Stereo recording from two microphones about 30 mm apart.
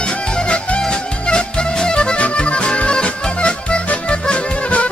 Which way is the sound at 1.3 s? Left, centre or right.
Left.